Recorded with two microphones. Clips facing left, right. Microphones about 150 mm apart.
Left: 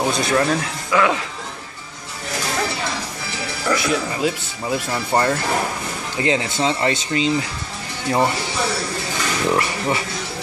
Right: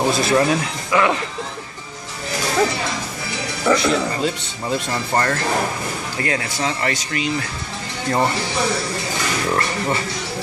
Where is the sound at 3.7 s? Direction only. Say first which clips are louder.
Right 2 dB; 5° left (ahead or behind).